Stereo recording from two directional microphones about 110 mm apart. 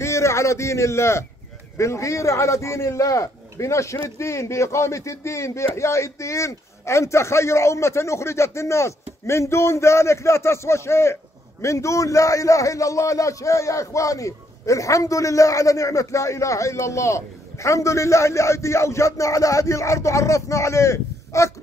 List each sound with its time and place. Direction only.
0.0 s a man's voice: 25° left (ahead or behind)